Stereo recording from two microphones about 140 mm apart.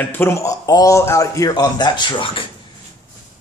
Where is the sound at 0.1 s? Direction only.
15° left (ahead or behind); by 2.4 s 35° left (ahead or behind).